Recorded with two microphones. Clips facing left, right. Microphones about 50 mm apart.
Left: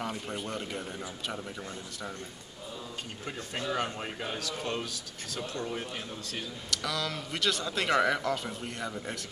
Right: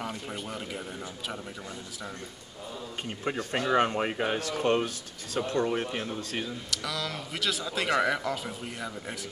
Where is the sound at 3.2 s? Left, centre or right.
Right.